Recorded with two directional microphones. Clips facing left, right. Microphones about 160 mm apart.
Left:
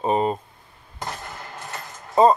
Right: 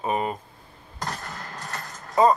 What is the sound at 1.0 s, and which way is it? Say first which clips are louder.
Hammer: even; 5° left (ahead or behind).